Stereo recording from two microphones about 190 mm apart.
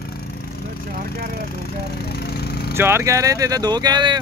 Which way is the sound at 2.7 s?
15° right (ahead or behind).